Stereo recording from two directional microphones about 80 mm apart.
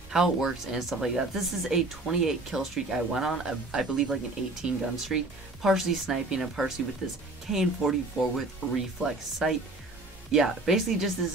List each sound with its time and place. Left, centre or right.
0.1 s speech: centre